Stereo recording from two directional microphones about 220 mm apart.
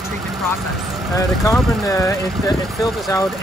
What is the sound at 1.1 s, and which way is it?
Speech, 15° left (ahead or behind).